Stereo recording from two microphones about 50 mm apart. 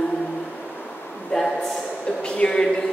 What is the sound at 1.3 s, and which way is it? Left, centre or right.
Speech, centre.